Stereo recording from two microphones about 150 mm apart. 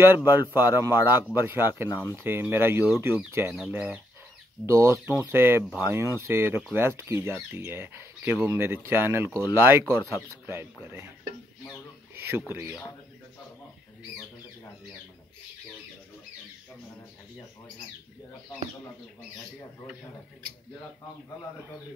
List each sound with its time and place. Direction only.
0.0 s speech: 15° right (ahead or behind)